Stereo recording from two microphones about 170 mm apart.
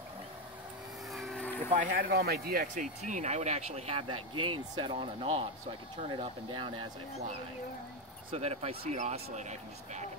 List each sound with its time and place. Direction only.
1.1 s vehicle: centre (ahead or behind)
1.7 s speech: 50° right (ahead or behind); by 6.7 s 30° right (ahead or behind)
8.3 s speech: 35° right (ahead or behind)